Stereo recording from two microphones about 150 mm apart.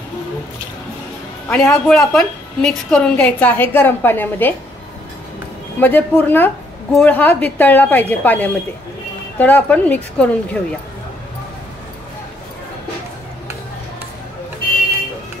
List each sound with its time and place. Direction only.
1.5 s a woman's voice: 5° left (ahead or behind)
5.8 s a woman's voice: 10° left (ahead or behind)